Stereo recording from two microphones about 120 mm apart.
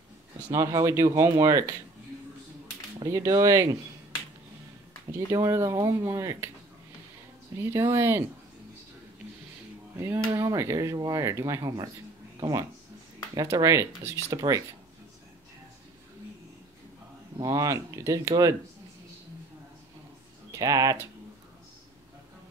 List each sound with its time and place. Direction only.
0.5 s speech: 30° right (ahead or behind)
3.1 s speech: 25° right (ahead or behind)
5.1 s speech: 25° right (ahead or behind)
7.6 s speech: 20° right (ahead or behind)
9.9 s speech: 20° right (ahead or behind)
17.4 s speech: 30° right (ahead or behind)
20.5 s speech: 30° right (ahead or behind)